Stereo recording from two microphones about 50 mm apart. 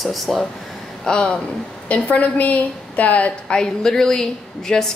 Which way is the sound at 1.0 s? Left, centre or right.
Centre.